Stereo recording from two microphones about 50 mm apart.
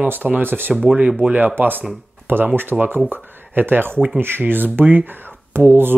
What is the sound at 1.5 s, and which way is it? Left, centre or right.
Speech, right.